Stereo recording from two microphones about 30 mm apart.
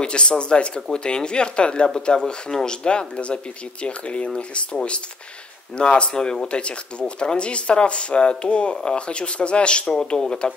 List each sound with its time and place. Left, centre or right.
0.0 s speech: left
5.8 s speech: left
9.8 s speech: left